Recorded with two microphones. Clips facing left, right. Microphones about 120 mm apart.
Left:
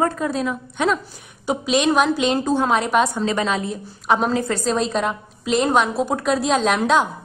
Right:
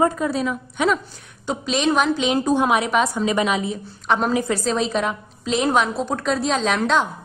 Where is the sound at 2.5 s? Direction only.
15° right (ahead or behind).